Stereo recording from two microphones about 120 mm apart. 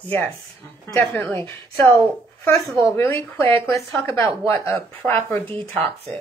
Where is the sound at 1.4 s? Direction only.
25° left (ahead or behind).